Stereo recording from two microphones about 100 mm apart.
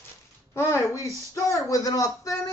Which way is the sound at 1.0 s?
35° left (ahead or behind).